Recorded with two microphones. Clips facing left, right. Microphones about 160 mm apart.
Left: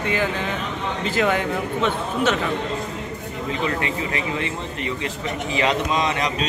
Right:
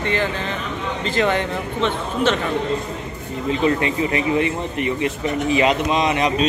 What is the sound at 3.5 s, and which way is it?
A man's voice, 25° right (ahead or behind).